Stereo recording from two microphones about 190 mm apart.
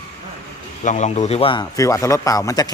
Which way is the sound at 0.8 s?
40° left (ahead or behind).